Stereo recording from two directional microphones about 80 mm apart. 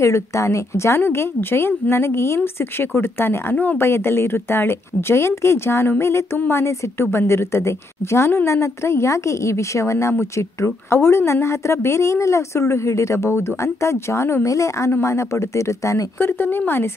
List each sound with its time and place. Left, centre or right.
0.0 s a woman's voice: left
16.2 s speech: left